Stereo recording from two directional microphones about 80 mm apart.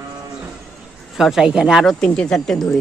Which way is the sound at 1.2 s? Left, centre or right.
Centre.